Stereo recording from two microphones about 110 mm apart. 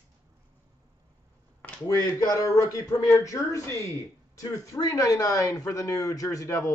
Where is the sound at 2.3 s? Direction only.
30° left (ahead or behind).